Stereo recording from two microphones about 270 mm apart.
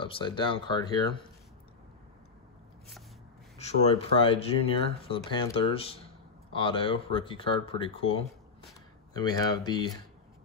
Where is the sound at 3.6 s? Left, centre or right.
Left.